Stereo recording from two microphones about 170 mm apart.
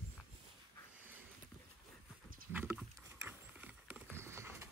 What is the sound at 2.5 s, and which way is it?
Horse, 10° right (ahead or behind).